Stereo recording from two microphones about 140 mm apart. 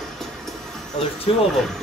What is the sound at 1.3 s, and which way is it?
Speech, 40° left (ahead or behind).